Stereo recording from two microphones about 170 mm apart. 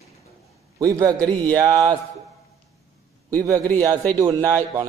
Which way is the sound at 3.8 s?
20° right (ahead or behind).